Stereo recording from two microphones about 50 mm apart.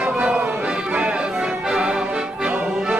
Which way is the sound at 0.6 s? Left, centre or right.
Right.